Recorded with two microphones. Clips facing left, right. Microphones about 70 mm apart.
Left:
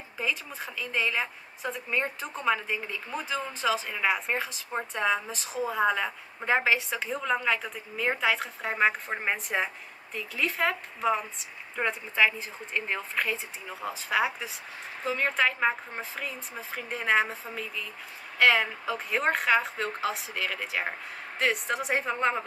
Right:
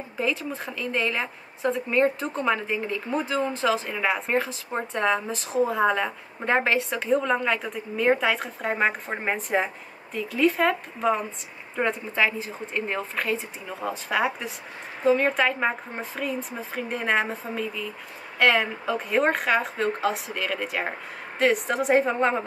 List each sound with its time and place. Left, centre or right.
0.2 s a woman's voice: centre